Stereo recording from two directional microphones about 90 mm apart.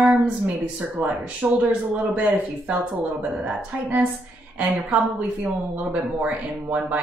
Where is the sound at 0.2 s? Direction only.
15° right (ahead or behind).